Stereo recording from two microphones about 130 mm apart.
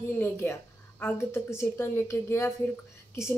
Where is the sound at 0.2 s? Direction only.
15° left (ahead or behind).